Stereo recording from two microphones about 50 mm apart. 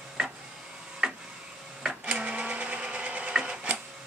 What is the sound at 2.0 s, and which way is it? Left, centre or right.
Sewing machine, right.